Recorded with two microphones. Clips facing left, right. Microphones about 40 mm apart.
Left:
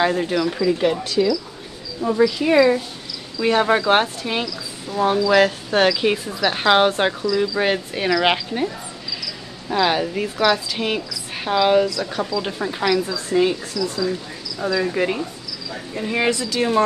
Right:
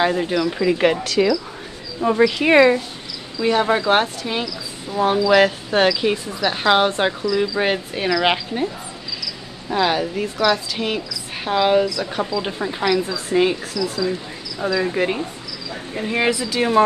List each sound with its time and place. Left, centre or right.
0.0 s speech: centre
1.0 s speech: right
2.0 s speech: right
3.3 s a woman's voice: centre
4.9 s speech: centre
5.7 s a woman's voice: centre
9.8 s a woman's voice: centre
13.3 s speech: right
14.7 s speech: centre